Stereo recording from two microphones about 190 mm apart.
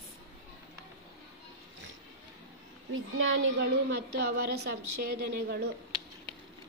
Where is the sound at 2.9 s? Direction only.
90° right.